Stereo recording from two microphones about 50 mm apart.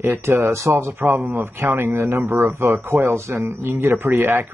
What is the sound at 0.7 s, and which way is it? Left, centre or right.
Speech, right.